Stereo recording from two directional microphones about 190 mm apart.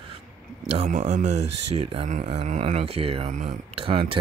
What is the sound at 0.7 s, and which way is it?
Speech, 35° right (ahead or behind).